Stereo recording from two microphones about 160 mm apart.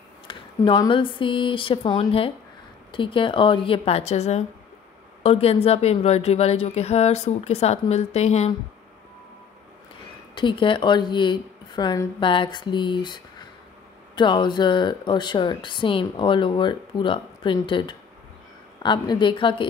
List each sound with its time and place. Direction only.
0.3 s speech: 30° left (ahead or behind)
10.3 s speech: 30° left (ahead or behind)